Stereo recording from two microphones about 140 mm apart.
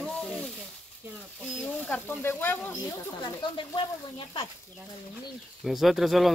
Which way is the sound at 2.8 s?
35° left (ahead or behind).